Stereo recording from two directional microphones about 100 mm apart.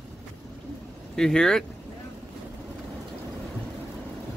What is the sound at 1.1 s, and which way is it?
Speech, 5° left (ahead or behind).